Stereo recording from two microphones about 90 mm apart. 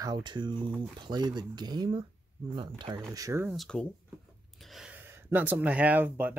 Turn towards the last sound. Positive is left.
turn(degrees=-20)  # may be behind; listen again after turning